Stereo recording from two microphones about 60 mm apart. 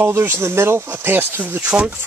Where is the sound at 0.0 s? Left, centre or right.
Right.